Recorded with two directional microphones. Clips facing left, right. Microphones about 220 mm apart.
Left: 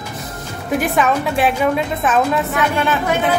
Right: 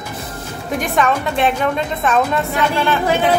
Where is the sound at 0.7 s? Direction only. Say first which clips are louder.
Left 1 dB; 5° left (ahead or behind).